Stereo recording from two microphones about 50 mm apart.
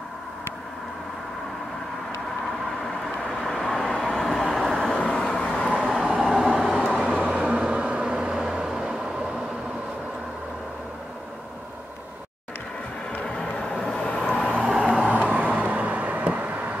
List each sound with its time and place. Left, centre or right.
2.8 s vehicle: centre
4.9 s vehicle: left
5.9 s vehicle: centre
7.1 s vehicle: right
13.2 s vehicle: centre
14.6 s vehicle: centre
14.9 s vehicle: right